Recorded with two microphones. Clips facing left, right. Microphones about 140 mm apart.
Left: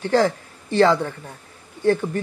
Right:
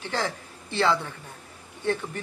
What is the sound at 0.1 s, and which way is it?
Speech, 40° left (ahead or behind).